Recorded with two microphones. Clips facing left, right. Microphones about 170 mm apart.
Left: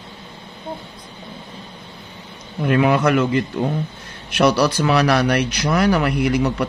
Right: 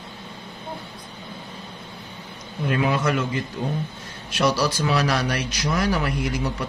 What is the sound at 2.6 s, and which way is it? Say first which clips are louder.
A man's voice: left 6 dB; 65° left (ahead or behind).